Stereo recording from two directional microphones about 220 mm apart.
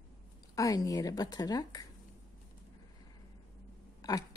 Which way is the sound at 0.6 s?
15° left (ahead or behind).